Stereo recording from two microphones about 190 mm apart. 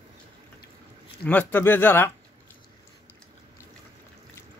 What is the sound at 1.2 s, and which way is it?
Speech, 10° left (ahead or behind).